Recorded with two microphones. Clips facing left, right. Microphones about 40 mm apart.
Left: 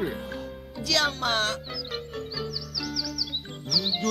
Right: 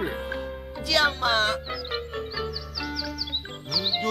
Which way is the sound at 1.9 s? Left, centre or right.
Right.